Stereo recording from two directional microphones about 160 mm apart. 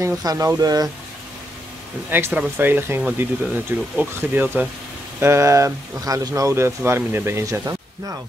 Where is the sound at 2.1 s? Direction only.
10° right (ahead or behind).